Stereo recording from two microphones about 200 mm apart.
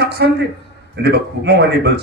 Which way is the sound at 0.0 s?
55° right (ahead or behind).